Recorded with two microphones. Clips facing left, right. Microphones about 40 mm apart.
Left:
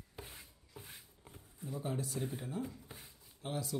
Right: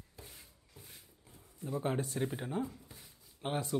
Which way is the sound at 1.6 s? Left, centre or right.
Right.